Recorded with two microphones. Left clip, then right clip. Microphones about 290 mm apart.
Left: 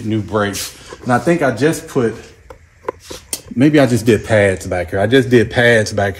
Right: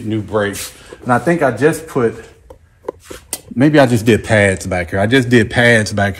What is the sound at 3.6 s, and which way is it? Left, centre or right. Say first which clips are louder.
Speech: right 1 dB; centre.